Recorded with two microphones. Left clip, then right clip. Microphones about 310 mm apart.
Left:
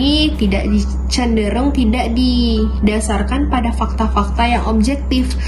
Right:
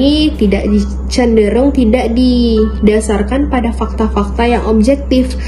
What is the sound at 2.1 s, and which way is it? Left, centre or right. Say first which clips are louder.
Speech: right 5 dB; centre.